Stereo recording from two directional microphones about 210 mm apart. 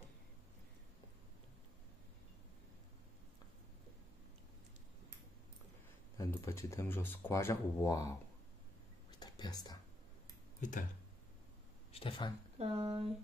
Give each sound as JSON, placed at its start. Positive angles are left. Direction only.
{"t": 6.1, "sound": "speech", "side_deg": 15}
{"t": 9.2, "sound": "a sound", "side_deg": 20}
{"t": 11.9, "sound": "speech", "side_deg": 25}
{"t": 12.5, "sound": "speech", "side_deg": -25}